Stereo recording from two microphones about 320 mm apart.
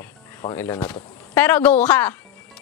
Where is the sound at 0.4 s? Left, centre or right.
Centre.